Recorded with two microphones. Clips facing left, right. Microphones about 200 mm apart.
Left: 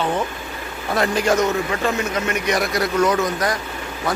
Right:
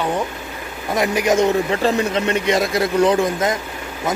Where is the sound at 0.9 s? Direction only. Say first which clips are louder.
Right 1 dB; 15° right (ahead or behind).